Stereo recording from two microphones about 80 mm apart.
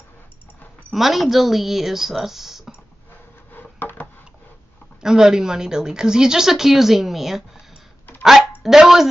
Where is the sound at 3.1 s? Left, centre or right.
Left.